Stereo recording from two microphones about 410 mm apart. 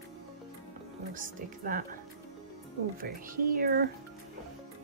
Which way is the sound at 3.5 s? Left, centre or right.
Right.